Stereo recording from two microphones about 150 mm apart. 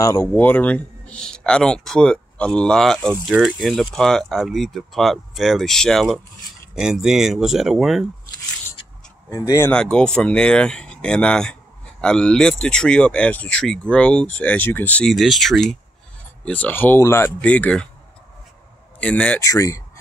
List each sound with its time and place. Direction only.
0.0 s speech: 20° left (ahead or behind); by 8.1 s centre (ahead or behind)
9.3 s speech: 20° left (ahead or behind)
9.7 s speech: 5° left (ahead or behind)
18.9 s speech: 10° left (ahead or behind)
19.4 s speech: 20° left (ahead or behind)